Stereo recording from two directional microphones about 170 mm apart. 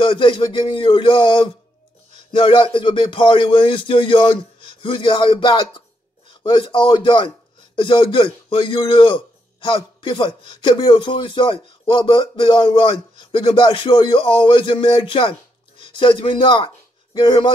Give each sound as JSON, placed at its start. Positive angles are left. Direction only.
{"t": 0.0, "sound": "a man's voice", "side_deg": 30}